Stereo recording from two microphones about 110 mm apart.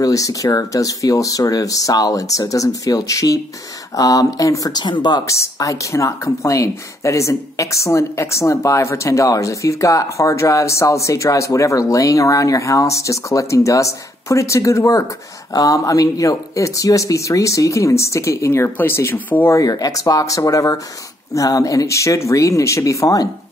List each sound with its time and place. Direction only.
0.0 s speech: 30° left (ahead or behind)
5.2 s speech: 25° left (ahead or behind)
19.5 s speech: 35° left (ahead or behind)